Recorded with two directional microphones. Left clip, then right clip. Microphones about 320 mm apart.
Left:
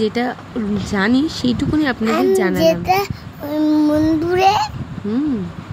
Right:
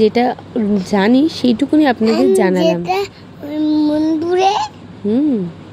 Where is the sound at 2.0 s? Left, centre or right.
Centre.